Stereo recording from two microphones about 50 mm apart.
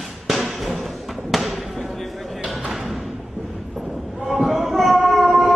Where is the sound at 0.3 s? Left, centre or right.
Centre.